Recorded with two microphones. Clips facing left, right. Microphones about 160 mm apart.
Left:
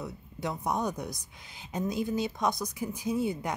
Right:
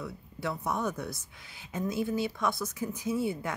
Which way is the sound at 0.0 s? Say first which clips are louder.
Even; 20° left (ahead or behind).